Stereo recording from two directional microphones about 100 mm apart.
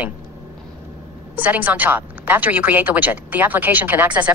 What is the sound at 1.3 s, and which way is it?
A woman's voice, 15° right (ahead or behind).